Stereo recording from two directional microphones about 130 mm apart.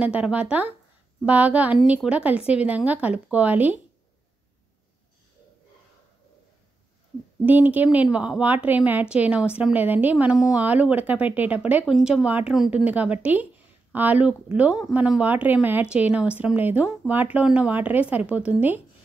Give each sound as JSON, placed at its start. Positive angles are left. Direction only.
{"t": 0.0, "sound": "speech", "side_deg": -10}
{"t": 7.4, "sound": "speech", "side_deg": -10}